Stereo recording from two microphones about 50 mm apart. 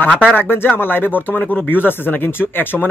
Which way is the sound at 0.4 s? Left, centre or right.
Left.